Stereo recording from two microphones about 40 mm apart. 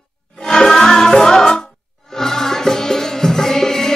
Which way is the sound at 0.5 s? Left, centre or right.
Centre.